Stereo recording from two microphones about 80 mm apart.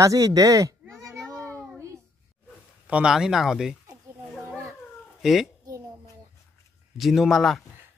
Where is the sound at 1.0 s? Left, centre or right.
Right.